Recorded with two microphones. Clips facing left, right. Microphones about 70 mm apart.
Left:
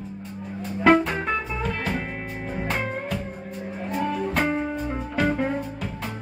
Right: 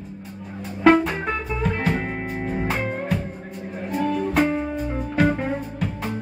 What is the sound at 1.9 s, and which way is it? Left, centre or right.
Music, right.